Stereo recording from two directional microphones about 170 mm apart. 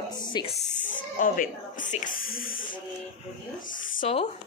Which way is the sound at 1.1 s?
50° left (ahead or behind).